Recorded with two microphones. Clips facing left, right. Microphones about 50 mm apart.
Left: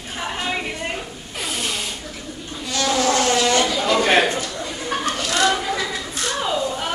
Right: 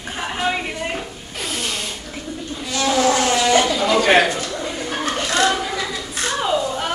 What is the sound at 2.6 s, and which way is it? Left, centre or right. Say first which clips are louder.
Vehicle: right 2 dB; centre.